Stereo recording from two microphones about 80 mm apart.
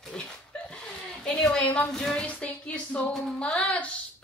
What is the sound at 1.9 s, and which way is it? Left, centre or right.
A woman's voice, centre.